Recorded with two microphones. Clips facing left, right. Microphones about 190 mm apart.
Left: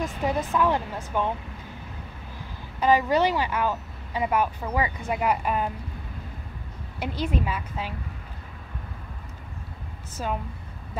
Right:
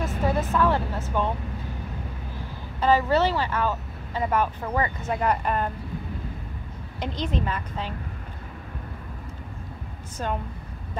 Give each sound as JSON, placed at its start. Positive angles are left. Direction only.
{"t": 0.2, "sound": "vehicle", "side_deg": 15}
{"t": 0.6, "sound": "speech", "side_deg": 15}
{"t": 2.8, "sound": "speech", "side_deg": 15}
{"t": 7.0, "sound": "speech", "side_deg": 10}
{"t": 10.2, "sound": "speech", "side_deg": 5}